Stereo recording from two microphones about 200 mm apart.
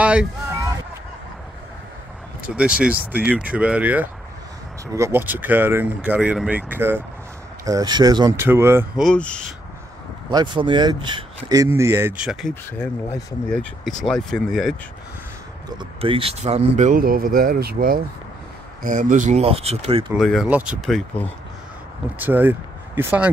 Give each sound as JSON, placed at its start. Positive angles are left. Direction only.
{"t": 0.0, "sound": "a sound", "side_deg": -5}
{"t": 2.4, "sound": "speech", "side_deg": -5}
{"t": 9.0, "sound": "speech", "side_deg": 5}
{"t": 10.3, "sound": "speech", "side_deg": -20}
{"t": 15.8, "sound": "speech", "side_deg": -25}
{"t": 20.2, "sound": "speech", "side_deg": 0}
{"t": 22.2, "sound": "speech", "side_deg": -10}